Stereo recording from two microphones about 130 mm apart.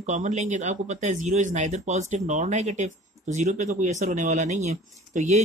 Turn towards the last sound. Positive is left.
turn(degrees=-65)  # may be behind; listen again after turning